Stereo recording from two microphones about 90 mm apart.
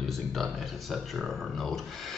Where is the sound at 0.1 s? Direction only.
Centre (ahead or behind).